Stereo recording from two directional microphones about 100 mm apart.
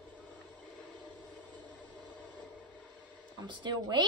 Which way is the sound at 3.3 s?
50° right (ahead or behind).